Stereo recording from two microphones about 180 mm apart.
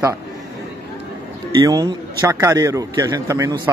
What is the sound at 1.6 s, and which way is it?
Speech, 20° right (ahead or behind).